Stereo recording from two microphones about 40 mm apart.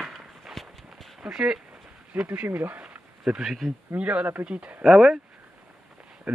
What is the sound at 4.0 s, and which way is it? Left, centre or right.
Speech, right.